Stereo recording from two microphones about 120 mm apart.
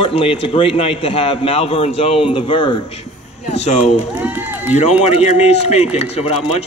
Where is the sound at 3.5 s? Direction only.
65° left (ahead or behind).